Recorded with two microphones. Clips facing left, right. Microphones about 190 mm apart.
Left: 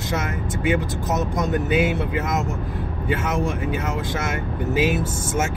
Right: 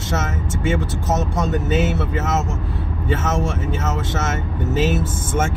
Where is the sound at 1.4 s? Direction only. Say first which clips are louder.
Left 1 dB; 10° left (ahead or behind).